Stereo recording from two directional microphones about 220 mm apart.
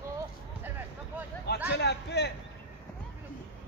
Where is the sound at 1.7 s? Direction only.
50° left (ahead or behind).